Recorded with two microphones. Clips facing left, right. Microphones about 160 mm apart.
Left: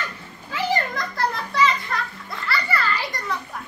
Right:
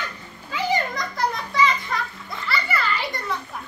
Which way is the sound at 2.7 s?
20° right (ahead or behind).